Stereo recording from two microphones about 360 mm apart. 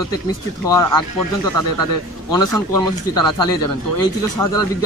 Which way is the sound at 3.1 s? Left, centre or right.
Left.